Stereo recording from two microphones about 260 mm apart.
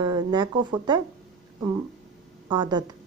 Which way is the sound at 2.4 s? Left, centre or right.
Centre.